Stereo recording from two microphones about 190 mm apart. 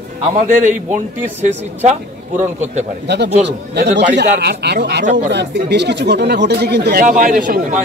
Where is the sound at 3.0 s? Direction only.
60° right (ahead or behind).